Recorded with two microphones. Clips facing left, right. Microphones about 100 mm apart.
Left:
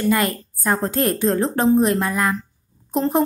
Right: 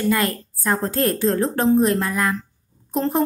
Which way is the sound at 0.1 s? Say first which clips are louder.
Left 1 dB; 20° left (ahead or behind).